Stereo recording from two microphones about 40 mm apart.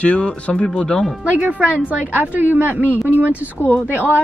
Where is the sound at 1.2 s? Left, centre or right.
Right.